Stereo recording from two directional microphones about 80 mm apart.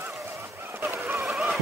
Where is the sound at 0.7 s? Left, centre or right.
Right.